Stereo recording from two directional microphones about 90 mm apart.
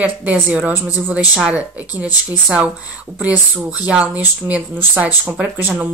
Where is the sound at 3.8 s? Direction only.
15° right (ahead or behind).